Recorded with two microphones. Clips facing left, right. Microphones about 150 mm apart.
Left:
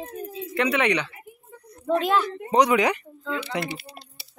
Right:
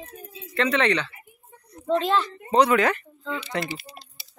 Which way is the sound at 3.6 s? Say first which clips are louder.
Left 1 dB; 60° left (ahead or behind).